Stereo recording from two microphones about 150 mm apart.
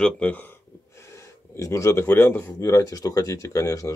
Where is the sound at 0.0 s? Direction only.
10° left (ahead or behind).